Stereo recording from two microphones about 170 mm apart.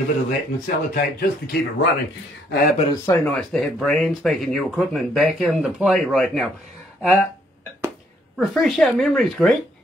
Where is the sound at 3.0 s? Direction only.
10° left (ahead or behind).